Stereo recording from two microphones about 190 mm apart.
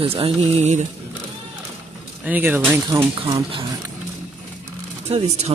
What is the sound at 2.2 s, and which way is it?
Speech, 10° right (ahead or behind).